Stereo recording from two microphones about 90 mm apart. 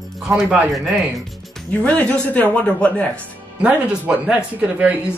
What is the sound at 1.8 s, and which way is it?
Speech, 15° left (ahead or behind).